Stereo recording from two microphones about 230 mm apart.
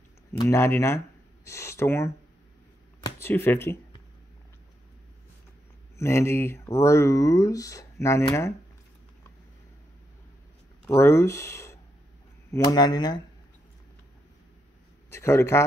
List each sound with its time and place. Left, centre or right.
0.4 s speech: centre
3.2 s speech: centre
5.9 s speech: centre
10.9 s speech: centre
15.0 s a man's voice: centre